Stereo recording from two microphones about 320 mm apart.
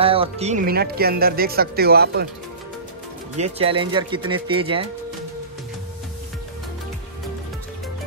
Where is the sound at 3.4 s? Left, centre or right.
Centre.